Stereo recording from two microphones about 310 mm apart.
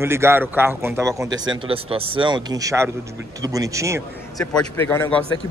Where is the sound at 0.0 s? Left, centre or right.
Centre.